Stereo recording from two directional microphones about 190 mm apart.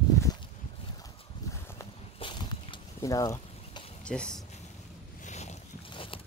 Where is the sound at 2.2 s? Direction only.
25° left (ahead or behind).